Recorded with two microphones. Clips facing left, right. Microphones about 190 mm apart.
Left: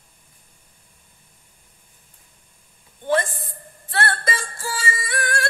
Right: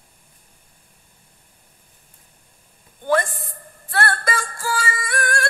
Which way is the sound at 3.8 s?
25° left (ahead or behind).